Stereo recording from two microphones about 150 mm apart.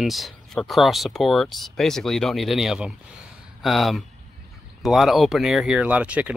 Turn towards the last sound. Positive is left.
turn(degrees=-10)  # may be behind; listen again after turning